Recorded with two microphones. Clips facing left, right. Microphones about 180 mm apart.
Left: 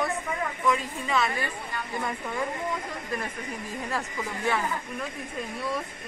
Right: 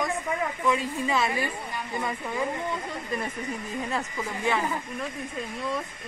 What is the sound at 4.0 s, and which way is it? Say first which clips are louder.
Speech: right 1 dB; 10° right (ahead or behind).